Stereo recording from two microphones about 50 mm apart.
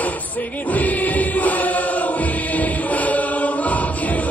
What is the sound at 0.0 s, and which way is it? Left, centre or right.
Music, left.